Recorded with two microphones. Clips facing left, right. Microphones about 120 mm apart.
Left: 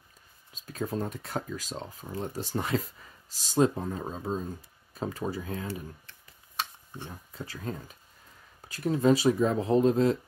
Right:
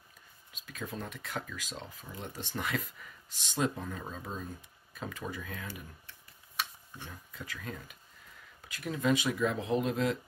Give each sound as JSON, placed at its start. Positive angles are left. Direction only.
{"t": 0.5, "sound": "speech", "side_deg": 35}
{"t": 6.9, "sound": "speech", "side_deg": 30}